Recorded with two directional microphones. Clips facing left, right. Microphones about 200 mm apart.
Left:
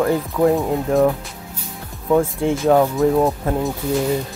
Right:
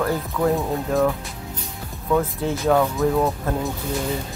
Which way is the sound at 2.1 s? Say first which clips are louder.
Left 5 dB; 25° left (ahead or behind).